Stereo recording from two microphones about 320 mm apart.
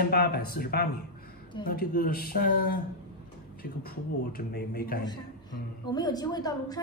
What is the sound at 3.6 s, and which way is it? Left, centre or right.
Speech, left.